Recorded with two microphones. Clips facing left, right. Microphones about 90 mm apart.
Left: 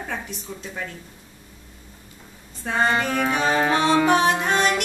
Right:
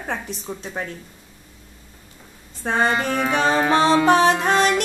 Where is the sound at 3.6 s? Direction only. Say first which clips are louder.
Right 3 dB; 30° right (ahead or behind).